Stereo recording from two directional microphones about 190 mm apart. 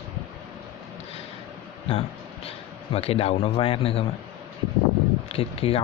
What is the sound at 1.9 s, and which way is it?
A man's voice, 30° left (ahead or behind).